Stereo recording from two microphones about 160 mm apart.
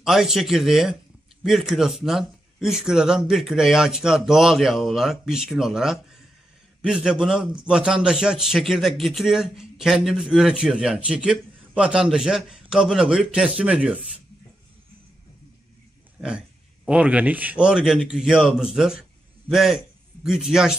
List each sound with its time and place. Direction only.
0.0 s a man's voice: centre (ahead or behind)
16.2 s a man's voice: 5° right (ahead or behind)